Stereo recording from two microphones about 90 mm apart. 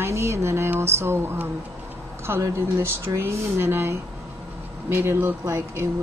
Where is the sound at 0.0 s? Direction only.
30° right (ahead or behind).